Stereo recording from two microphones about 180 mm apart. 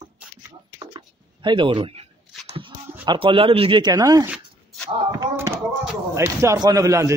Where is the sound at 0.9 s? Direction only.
25° right (ahead or behind).